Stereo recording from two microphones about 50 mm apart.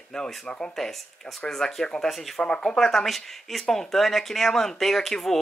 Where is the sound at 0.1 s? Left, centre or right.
Left.